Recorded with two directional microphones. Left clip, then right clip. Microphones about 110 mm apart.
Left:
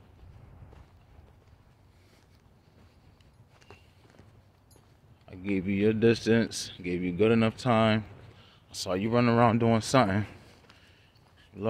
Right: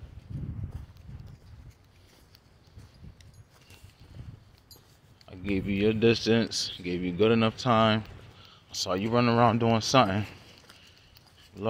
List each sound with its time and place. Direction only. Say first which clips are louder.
5.2 s speech: even; 10° left (ahead or behind); by 10.5 s 25° left (ahead or behind)